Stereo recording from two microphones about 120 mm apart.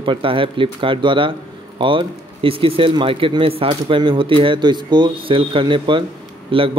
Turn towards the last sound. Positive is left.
turn(degrees=-45)  # may be behind; listen again after turning